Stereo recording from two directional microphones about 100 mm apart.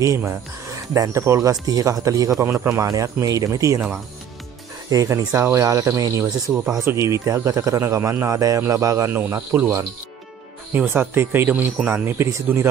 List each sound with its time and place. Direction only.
0.0 s speech: 30° right (ahead or behind)
4.8 s speech: 35° right (ahead or behind)
9.1 s speech: 20° right (ahead or behind)
10.7 s speech: 20° right (ahead or behind)